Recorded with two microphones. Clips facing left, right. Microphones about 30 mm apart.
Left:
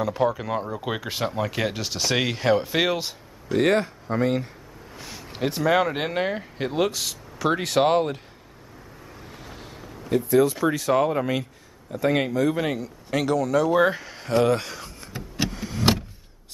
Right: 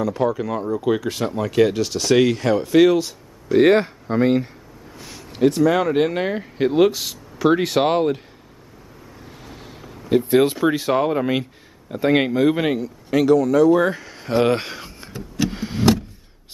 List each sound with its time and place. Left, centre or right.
0.0 s speech: centre
3.5 s speech: centre
4.9 s speech: centre
9.4 s vehicle: centre
10.3 s speech: right
10.6 s speech: right
11.0 s speech: centre
12.6 s speech: centre
14.3 s speech: right
15.1 s vehicle: centre
15.5 s vehicle: right